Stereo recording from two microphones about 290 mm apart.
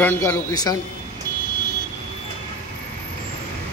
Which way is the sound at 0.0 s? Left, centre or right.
Centre.